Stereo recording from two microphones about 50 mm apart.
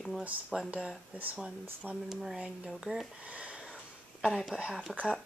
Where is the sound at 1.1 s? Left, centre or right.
Right.